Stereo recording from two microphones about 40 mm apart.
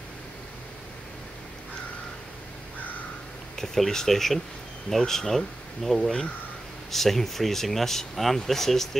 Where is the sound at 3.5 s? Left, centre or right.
Centre.